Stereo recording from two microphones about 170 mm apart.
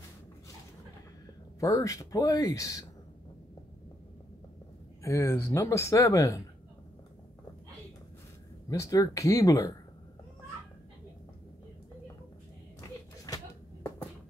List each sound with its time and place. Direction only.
1.6 s speech: 20° left (ahead or behind)
5.0 s speech: 15° left (ahead or behind)
8.6 s speech: 20° left (ahead or behind)